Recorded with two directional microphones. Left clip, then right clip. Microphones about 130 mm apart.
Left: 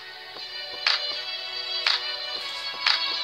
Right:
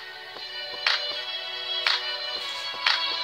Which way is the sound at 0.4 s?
25° right (ahead or behind).